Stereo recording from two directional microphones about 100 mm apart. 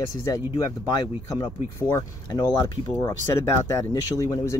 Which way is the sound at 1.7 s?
30° left (ahead or behind).